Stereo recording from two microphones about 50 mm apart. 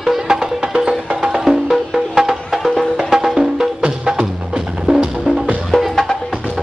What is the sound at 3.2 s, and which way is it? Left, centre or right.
Music, centre.